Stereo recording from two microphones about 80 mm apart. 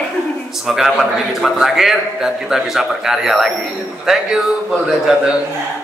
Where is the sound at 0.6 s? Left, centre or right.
Centre.